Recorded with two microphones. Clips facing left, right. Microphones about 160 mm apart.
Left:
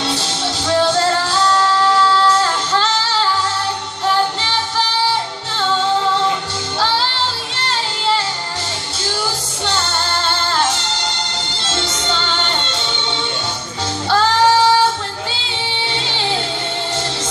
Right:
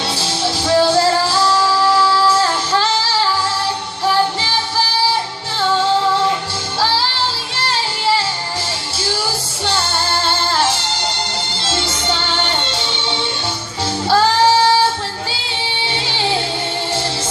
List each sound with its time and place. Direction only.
0.1 s music: 5° right (ahead or behind)
10.2 s music: 5° right (ahead or behind)